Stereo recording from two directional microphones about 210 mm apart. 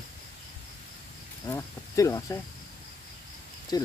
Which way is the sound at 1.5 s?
15° left (ahead or behind).